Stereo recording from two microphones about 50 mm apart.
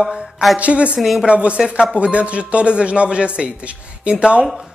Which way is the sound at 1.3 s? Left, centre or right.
Right.